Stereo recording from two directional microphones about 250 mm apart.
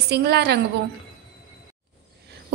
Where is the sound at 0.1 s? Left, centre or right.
Right.